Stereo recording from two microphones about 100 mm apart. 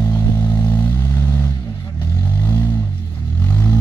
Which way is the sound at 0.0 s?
25° left (ahead or behind).